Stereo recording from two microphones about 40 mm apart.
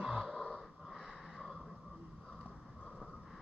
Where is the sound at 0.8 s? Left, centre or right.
Centre.